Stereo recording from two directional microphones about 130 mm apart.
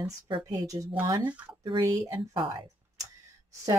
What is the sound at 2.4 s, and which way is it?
Speech, 40° right (ahead or behind).